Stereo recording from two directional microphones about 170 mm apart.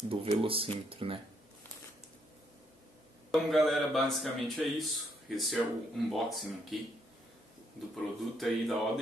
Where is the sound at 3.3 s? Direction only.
Centre (ahead or behind).